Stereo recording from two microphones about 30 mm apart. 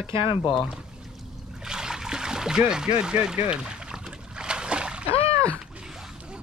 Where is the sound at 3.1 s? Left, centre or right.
Right.